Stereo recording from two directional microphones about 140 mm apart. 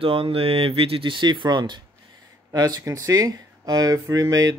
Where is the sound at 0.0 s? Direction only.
40° right (ahead or behind).